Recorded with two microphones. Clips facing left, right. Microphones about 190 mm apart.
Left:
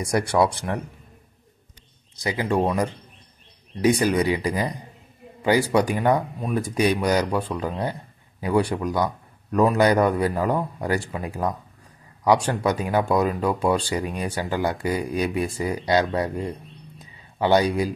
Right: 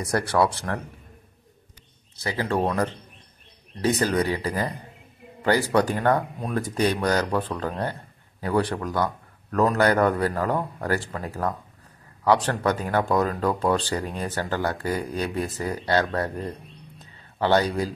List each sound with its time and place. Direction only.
0.0 s speech: 15° left (ahead or behind)
2.1 s speech: 15° left (ahead or behind)
17.0 s a sound: 15° left (ahead or behind)